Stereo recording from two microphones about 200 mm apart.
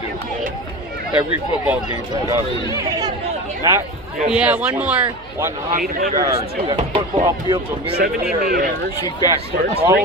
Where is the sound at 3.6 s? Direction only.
15° right (ahead or behind).